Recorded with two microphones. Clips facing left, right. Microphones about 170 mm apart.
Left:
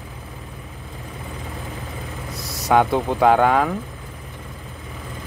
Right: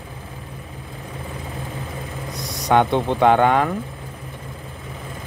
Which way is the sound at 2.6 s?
5° left (ahead or behind).